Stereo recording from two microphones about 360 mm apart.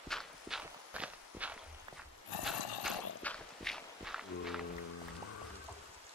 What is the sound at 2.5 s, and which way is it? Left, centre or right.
Horse, left.